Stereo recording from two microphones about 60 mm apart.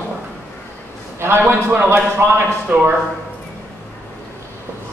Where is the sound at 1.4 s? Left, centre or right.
Right.